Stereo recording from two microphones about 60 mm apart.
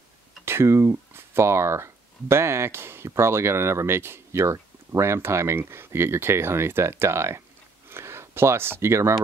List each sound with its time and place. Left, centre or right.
0.5 s speech: right